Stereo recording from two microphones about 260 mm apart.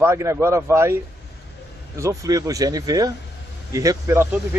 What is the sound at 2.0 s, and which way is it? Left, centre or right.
A man's voice, centre.